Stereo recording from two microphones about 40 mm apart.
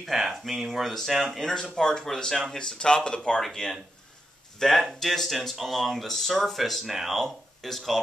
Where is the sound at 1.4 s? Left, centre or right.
Centre.